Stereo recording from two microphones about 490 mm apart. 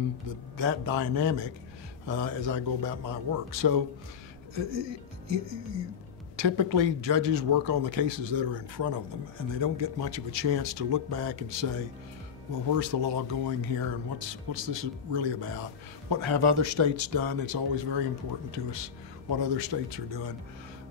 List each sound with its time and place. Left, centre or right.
0.3 s speech: right